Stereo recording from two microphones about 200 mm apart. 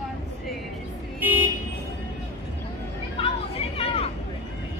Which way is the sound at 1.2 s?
10° right (ahead or behind).